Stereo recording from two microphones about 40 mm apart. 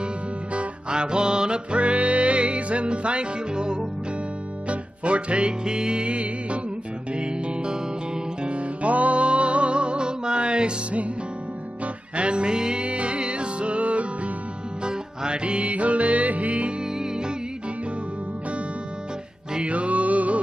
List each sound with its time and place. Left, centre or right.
0.8 s music: right
8.5 s music: right
14.9 s music: right
17.0 s music: centre
19.7 s music: right